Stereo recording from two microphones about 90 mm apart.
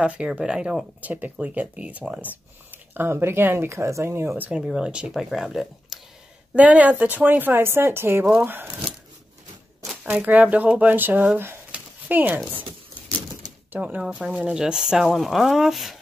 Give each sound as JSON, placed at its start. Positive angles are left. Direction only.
{"t": 0.0, "sound": "speech", "side_deg": -10}
{"t": 4.5, "sound": "speech", "side_deg": -10}
{"t": 6.5, "sound": "speech", "side_deg": -15}
{"t": 10.0, "sound": "speech", "side_deg": -15}
{"t": 11.3, "sound": "a sound", "side_deg": -25}
{"t": 14.0, "sound": "speech", "side_deg": -5}